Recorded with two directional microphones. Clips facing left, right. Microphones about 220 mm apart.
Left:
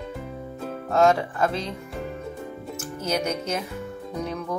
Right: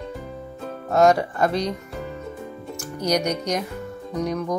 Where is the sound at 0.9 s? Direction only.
Centre (ahead or behind).